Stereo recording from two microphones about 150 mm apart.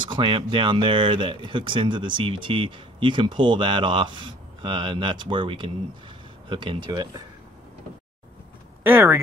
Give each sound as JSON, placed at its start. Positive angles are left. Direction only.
{"t": 0.1, "sound": "speech", "side_deg": -35}
{"t": 8.8, "sound": "speech", "side_deg": -15}